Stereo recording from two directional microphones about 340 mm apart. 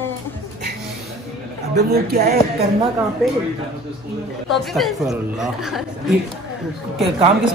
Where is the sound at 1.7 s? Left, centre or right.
Right.